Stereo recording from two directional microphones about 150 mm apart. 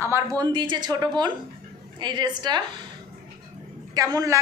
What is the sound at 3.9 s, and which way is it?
Speech, 25° right (ahead or behind).